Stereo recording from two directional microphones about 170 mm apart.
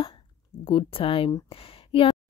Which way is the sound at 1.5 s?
35° left (ahead or behind).